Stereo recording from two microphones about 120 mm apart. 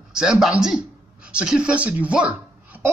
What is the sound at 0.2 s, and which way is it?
A man's voice, 5° right (ahead or behind).